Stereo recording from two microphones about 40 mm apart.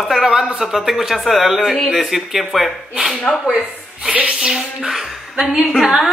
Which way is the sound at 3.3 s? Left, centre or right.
Centre.